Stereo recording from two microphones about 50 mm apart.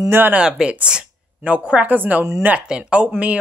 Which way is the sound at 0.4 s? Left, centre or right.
Centre.